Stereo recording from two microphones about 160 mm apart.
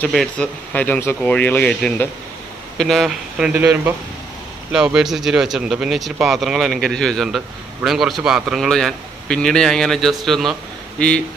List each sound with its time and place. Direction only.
0.0 s speech: 5° left (ahead or behind)